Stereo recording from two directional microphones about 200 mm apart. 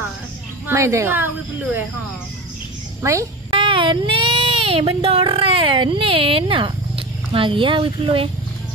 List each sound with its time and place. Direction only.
0.7 s speech: 15° right (ahead or behind)
3.0 s a sound: 15° right (ahead or behind)
3.5 s speech: 25° right (ahead or behind)